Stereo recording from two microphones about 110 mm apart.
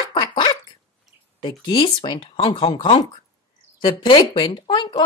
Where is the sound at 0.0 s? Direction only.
45° left (ahead or behind).